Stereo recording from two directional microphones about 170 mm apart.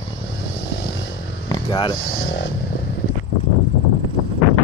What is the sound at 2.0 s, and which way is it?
Music, 90° left.